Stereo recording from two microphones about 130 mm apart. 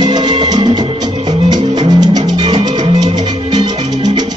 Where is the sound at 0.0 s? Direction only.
35° right (ahead or behind).